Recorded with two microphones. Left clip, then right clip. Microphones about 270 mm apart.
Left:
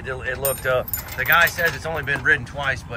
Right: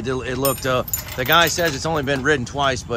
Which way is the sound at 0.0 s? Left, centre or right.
Right.